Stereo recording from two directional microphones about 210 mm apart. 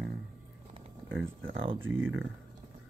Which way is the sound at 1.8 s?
65° right (ahead or behind).